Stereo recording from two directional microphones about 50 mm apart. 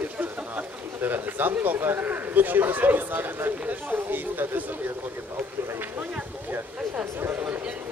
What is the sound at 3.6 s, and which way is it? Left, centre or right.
Speech, right.